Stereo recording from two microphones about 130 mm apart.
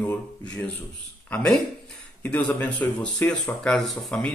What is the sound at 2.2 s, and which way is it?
Speech, 10° left (ahead or behind).